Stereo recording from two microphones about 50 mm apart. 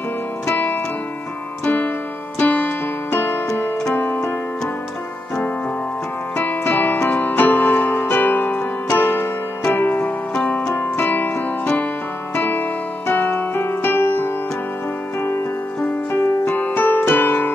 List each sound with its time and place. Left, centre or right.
1.6 s keyboard: left
2.3 s music: left
6.3 s music: left
7.1 s keyboard: left
9.8 s music: left
10.3 s music: centre
10.7 s music: left
12.4 s music: left
13.1 s keyboard: left
16.1 s music: left